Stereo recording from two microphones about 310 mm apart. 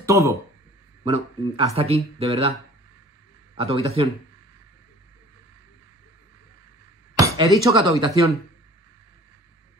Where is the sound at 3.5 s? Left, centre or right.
Centre.